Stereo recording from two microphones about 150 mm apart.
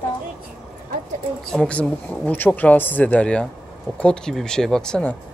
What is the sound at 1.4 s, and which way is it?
Speech, 5° left (ahead or behind).